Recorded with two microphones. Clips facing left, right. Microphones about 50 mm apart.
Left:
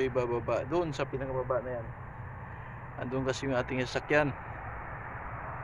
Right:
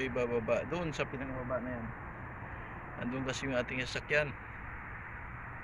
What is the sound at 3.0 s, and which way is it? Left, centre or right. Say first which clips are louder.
Speech: left 5 dB; centre.